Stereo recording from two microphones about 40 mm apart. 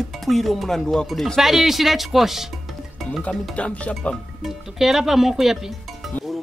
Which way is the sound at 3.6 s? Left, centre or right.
Left.